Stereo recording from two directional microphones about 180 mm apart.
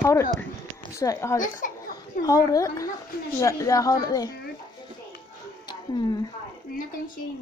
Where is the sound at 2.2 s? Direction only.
20° left (ahead or behind).